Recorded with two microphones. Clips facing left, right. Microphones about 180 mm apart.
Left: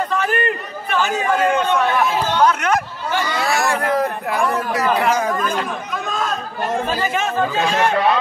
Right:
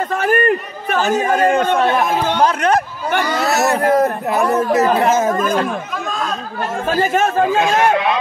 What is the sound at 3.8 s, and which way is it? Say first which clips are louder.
Speech: right 5 dB; 45° right (ahead or behind).